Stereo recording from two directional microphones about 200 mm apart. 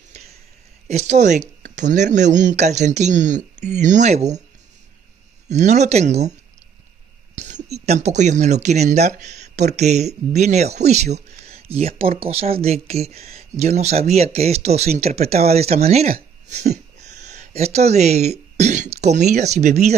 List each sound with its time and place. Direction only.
0.8 s speech: 35° right (ahead or behind)
5.5 s speech: 35° right (ahead or behind)
7.3 s speech: 35° right (ahead or behind)